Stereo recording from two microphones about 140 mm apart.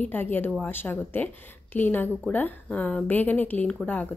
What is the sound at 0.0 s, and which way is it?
A woman's voice, 15° left (ahead or behind).